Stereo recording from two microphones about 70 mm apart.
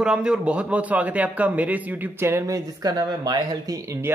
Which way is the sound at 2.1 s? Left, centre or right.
Right.